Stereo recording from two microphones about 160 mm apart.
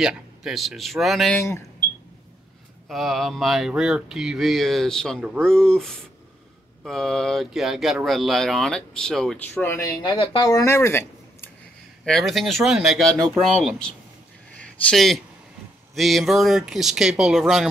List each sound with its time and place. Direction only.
0.0 s speech: centre (ahead or behind)
2.9 s speech: centre (ahead or behind)
12.0 s speech: centre (ahead or behind)
14.5 s a sound: 5° left (ahead or behind)
15.9 s speech: centre (ahead or behind)